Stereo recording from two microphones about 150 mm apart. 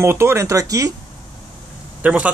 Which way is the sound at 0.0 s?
15° right (ahead or behind).